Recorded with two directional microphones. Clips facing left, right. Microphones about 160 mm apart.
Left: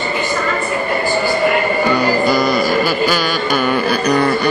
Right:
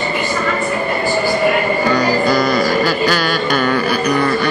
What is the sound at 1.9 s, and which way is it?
Music, 5° left (ahead or behind).